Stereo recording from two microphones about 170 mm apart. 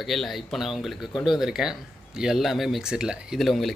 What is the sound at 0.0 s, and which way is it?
Speech, centre (ahead or behind).